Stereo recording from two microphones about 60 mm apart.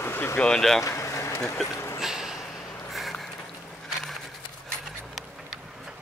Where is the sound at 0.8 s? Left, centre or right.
Left.